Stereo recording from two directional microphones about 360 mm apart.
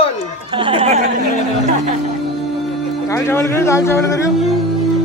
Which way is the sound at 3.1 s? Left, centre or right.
Centre.